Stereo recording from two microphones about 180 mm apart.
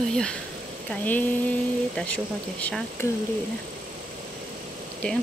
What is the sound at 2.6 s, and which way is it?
Speech, 10° left (ahead or behind).